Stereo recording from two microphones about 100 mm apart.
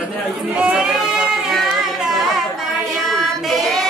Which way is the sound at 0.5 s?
10° right (ahead or behind).